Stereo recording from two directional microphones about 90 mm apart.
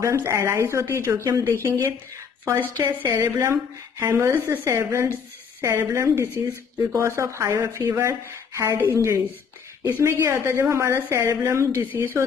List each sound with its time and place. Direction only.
0.0 s a woman's voice: 30° right (ahead or behind)
3.2 s a woman's voice: 30° right (ahead or behind)
11.9 s speech: 25° right (ahead or behind)